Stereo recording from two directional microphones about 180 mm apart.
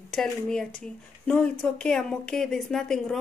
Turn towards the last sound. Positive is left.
turn(degrees=0)  # may be behind; listen again after turning